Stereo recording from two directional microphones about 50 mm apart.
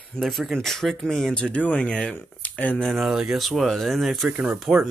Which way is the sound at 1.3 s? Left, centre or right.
Left.